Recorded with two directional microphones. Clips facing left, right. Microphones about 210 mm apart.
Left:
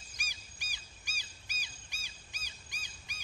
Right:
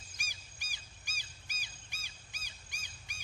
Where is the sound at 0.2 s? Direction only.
45° right (ahead or behind).